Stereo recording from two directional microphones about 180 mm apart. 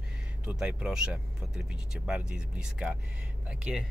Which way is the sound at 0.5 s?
5° right (ahead or behind).